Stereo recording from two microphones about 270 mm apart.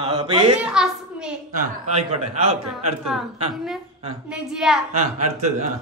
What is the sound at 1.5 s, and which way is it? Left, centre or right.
Speech, right.